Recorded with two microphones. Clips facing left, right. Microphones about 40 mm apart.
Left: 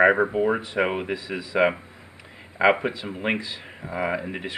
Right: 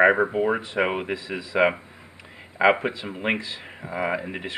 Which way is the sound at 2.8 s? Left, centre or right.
Centre.